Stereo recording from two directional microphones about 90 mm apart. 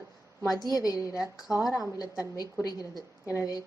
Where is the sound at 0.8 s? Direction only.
40° left (ahead or behind).